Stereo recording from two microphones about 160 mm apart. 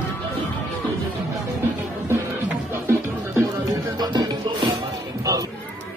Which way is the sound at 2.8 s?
15° right (ahead or behind).